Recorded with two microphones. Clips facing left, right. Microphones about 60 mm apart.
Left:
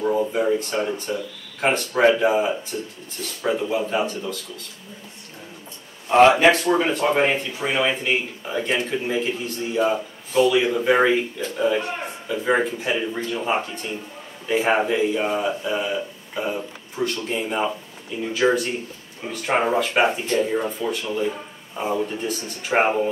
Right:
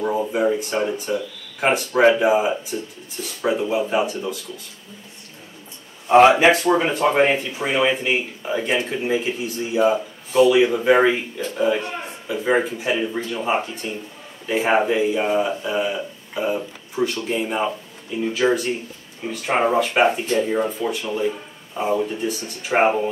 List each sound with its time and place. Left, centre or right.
0.0 s speech: centre
6.0 s speech: centre